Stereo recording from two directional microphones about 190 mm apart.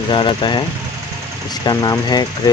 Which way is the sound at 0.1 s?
25° left (ahead or behind).